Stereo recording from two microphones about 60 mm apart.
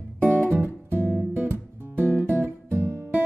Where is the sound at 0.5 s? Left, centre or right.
Right.